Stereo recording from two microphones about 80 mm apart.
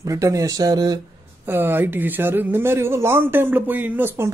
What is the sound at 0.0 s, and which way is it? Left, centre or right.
Speech, right.